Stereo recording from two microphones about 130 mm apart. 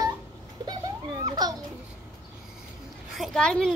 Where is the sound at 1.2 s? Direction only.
30° right (ahead or behind).